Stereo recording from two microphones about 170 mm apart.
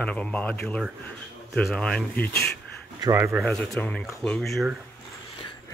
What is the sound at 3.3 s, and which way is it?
Speech, centre (ahead or behind).